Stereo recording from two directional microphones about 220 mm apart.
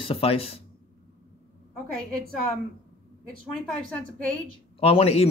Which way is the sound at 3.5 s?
5° left (ahead or behind).